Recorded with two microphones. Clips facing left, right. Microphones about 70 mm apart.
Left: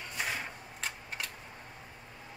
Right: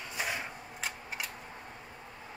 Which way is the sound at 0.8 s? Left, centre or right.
Centre.